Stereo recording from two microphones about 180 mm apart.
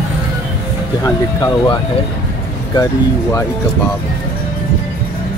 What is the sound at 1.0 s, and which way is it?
Speech, 20° left (ahead or behind).